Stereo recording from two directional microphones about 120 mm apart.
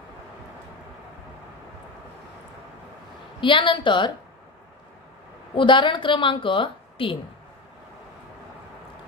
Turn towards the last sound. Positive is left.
turn(degrees=45)  # may be behind; listen again after turning